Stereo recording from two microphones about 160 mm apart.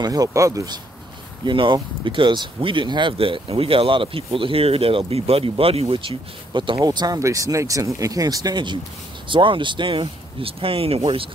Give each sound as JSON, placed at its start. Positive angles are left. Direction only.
{"t": 0.0, "sound": "speech", "side_deg": -25}